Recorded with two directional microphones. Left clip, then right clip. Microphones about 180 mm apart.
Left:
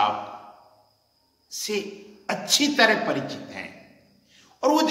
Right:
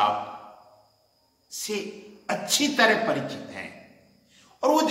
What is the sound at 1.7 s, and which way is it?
A woman's voice, 20° left (ahead or behind).